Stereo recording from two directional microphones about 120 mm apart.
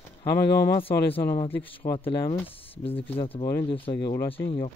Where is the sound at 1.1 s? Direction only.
50° left (ahead or behind).